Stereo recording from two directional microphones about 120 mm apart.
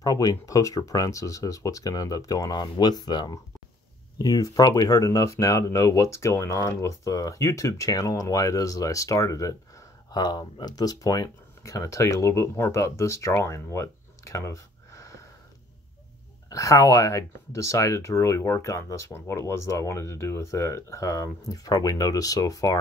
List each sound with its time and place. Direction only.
0.0 s speech: 30° left (ahead or behind)
16.4 s speech: 25° left (ahead or behind)